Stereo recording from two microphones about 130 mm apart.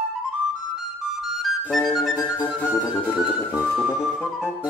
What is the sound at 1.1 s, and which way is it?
Flute, centre (ahead or behind).